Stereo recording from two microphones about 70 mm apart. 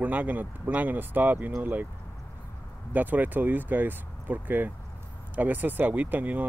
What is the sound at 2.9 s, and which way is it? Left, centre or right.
Speech, right.